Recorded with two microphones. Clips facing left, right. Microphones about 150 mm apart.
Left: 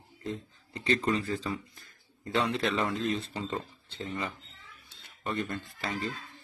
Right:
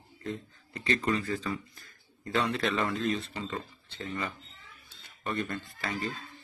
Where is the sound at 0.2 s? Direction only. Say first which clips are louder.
Even; 25° left (ahead or behind).